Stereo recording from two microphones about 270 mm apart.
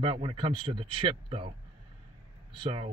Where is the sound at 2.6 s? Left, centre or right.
Right.